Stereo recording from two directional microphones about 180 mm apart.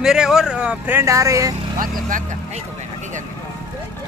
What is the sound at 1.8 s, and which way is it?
Speech, 50° right (ahead or behind).